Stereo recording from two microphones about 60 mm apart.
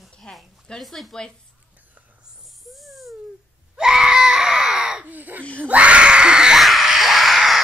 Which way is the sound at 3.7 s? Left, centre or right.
Centre.